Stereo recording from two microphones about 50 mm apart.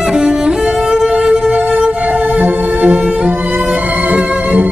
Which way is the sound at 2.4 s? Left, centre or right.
Right.